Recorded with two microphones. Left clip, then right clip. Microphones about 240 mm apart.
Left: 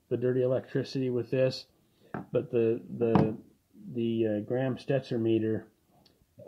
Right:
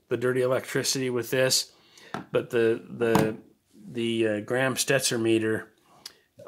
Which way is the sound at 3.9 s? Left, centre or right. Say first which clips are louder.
Right 3 dB; centre.